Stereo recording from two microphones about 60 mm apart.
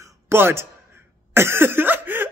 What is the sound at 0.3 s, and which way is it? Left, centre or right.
Speech, right.